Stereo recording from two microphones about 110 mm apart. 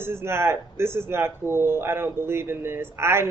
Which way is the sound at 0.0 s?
20° right (ahead or behind).